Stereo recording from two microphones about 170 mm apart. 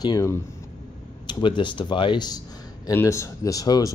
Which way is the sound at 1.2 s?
30° left (ahead or behind).